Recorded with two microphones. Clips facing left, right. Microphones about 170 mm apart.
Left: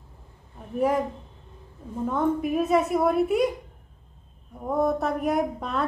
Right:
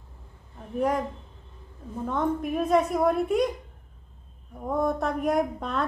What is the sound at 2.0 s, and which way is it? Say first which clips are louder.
Speech: left 3 dB; 5° left (ahead or behind).